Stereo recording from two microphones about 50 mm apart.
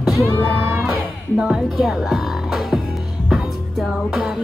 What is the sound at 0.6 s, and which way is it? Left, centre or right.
Crowd, right.